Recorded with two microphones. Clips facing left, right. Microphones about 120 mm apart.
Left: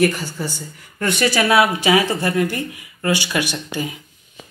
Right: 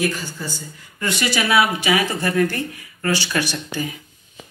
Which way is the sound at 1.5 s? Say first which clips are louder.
Left 1 dB; 35° left (ahead or behind).